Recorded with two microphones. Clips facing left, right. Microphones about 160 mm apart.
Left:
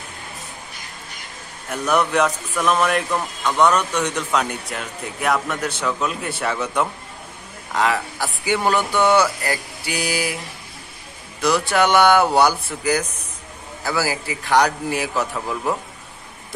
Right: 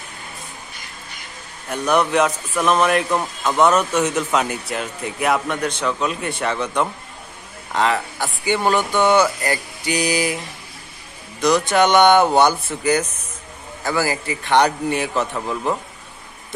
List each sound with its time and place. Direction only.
1.7 s a man's voice: centre (ahead or behind)
8.7 s speech: 15° right (ahead or behind)
9.4 s speech: 5° left (ahead or behind)
11.4 s speech: 5° left (ahead or behind)